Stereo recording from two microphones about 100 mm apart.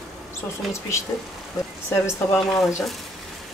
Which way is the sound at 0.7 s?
30° left (ahead or behind).